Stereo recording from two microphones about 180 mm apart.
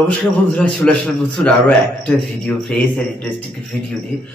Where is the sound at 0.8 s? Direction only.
5° left (ahead or behind).